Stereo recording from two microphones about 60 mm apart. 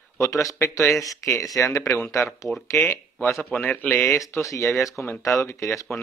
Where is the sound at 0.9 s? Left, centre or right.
Left.